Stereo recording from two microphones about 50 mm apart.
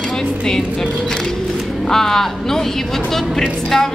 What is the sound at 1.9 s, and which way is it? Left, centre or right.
A woman's voice, centre.